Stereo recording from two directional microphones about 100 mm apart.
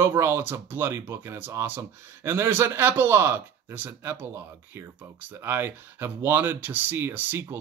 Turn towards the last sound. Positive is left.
turn(degrees=-20)  # may be behind; listen again after turning